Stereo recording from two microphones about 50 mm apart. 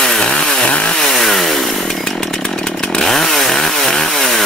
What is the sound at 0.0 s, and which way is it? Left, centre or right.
Chainsaw, centre.